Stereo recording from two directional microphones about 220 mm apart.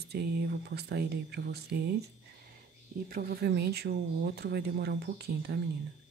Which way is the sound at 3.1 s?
40° right (ahead or behind).